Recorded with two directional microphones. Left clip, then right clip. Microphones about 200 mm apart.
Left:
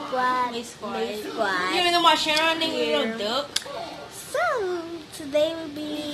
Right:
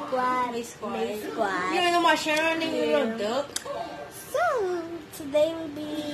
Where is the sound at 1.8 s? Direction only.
20° right (ahead or behind).